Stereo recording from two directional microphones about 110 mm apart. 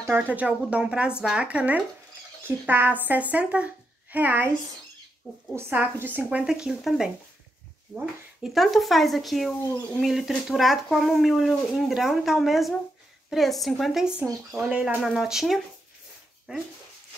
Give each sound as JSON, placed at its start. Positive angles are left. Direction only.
{"t": 0.0, "sound": "a child's voice", "side_deg": -15}
{"t": 5.6, "sound": "speech", "side_deg": -20}
{"t": 8.5, "sound": "speech", "side_deg": 0}